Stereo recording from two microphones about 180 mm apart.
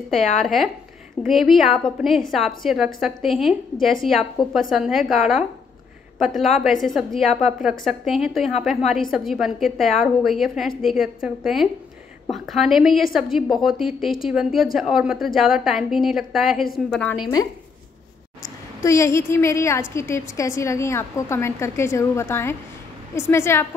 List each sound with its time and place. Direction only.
1.2 s a woman's voice: centre (ahead or behind)
18.8 s a woman's voice: 15° left (ahead or behind)